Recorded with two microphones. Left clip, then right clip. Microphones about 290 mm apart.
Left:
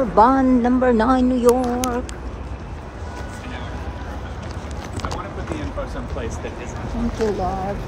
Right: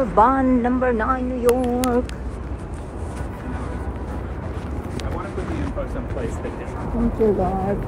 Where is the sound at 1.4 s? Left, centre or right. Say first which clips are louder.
Left 2 dB; centre.